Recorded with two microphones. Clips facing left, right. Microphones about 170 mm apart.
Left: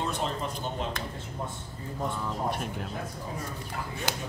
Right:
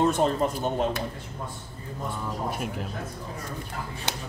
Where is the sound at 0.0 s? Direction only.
50° right (ahead or behind).